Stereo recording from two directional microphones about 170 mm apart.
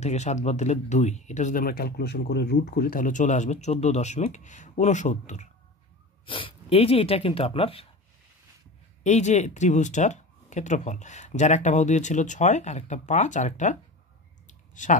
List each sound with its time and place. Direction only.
0.0 s speech: 40° left (ahead or behind)
6.2 s speech: 30° left (ahead or behind)
9.0 s speech: 40° left (ahead or behind)
14.5 s a sound: 45° left (ahead or behind)